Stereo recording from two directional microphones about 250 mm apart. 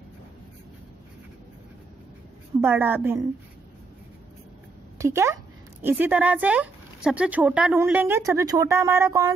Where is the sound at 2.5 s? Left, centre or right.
Centre.